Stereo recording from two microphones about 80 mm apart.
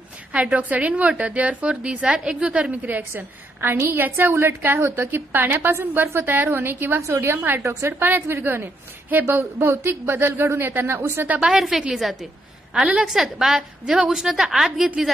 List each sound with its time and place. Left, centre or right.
0.3 s a woman's voice: centre
7.0 s speech: right
7.3 s a woman's voice: right
11.2 s a woman's voice: right
11.5 s a woman's voice: centre